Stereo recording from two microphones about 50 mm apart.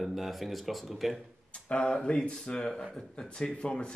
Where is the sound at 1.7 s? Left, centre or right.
Centre.